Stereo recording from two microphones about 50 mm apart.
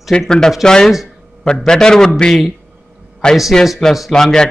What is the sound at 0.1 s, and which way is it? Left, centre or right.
A man's voice, centre.